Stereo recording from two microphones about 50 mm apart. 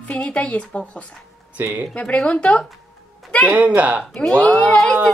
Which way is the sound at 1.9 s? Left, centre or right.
Left.